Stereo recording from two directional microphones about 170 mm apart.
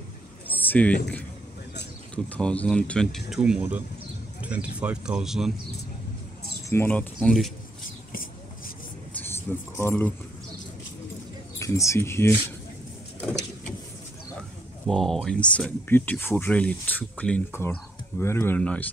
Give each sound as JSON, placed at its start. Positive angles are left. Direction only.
{"t": 0.5, "sound": "a sound", "side_deg": 10}
{"t": 2.2, "sound": "speech", "side_deg": 10}
{"t": 6.7, "sound": "speech", "side_deg": 10}
{"t": 9.1, "sound": "a sound", "side_deg": 10}
{"t": 11.5, "sound": "speech", "side_deg": 20}
{"t": 13.2, "sound": "vehicle", "side_deg": 10}
{"t": 14.9, "sound": "speech", "side_deg": 5}